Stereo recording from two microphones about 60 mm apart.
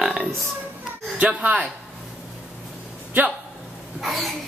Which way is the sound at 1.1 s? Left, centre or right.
Centre.